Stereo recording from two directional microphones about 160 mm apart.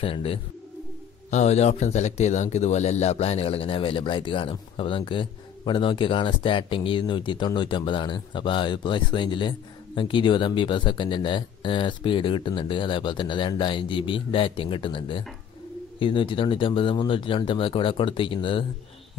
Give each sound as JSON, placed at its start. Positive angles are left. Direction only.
{"t": 0.0, "sound": "speech", "side_deg": 35}